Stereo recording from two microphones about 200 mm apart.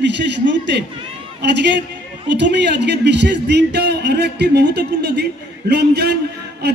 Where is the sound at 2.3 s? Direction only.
60° right (ahead or behind).